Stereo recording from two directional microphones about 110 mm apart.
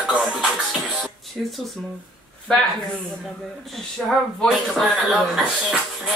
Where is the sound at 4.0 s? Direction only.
5° left (ahead or behind).